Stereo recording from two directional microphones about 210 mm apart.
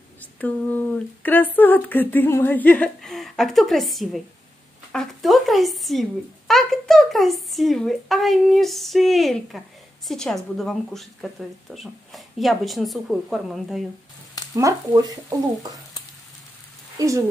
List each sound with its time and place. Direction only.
0.2 s a woman's voice: 10° left (ahead or behind)
14.5 s speech: 15° right (ahead or behind)